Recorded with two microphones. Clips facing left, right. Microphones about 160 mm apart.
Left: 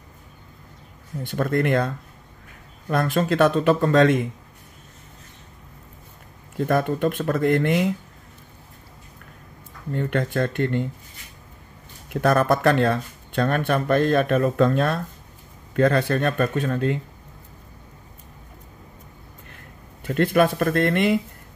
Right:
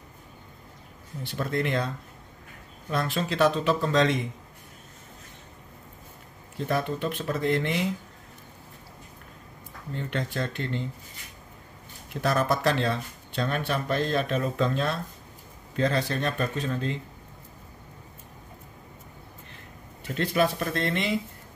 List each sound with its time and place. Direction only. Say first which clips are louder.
1.2 s speech: left 6 dB; 50° left (ahead or behind)
2.9 s speech: left 7 dB; 50° left (ahead or behind)
6.7 s speech: left 6 dB; 50° left (ahead or behind)
9.9 s speech: left 7 dB; 55° left (ahead or behind)
12.1 s speech: left 6 dB; 55° left (ahead or behind)
20.2 s speech: left 6 dB; 55° left (ahead or behind)